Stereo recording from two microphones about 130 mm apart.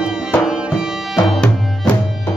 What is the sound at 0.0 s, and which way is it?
Music, 5° right (ahead or behind).